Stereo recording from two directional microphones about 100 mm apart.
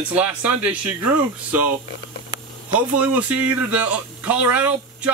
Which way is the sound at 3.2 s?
15° right (ahead or behind).